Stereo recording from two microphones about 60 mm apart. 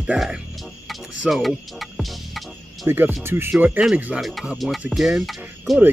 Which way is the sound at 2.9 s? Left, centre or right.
Right.